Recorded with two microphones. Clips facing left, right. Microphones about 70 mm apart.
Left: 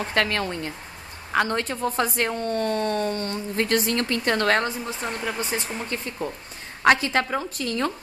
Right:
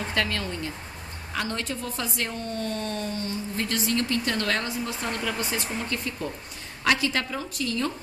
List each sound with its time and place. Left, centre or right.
0.1 s a woman's voice: left
5.0 s a woman's voice: centre; by 7.9 s left